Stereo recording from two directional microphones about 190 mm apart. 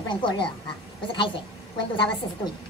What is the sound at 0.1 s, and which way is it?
A woman's voice, 25° left (ahead or behind).